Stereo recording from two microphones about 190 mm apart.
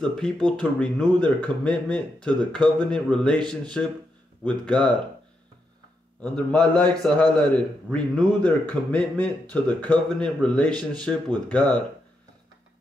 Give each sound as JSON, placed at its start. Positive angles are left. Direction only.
{"t": 0.0, "sound": "speech", "side_deg": 5}
{"t": 6.2, "sound": "a man's voice", "side_deg": 5}